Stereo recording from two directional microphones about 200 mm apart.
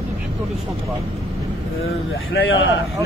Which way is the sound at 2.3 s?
80° left.